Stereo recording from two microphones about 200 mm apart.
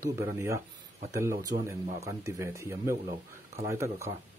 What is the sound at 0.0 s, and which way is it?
Speech, 15° right (ahead or behind).